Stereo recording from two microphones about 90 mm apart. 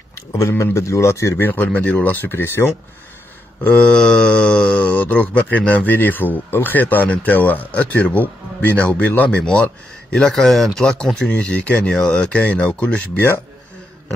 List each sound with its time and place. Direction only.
0.1 s speech: 35° left (ahead or behind)
3.6 s speech: 10° left (ahead or behind)